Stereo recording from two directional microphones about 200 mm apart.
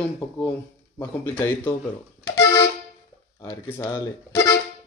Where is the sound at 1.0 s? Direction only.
10° left (ahead or behind).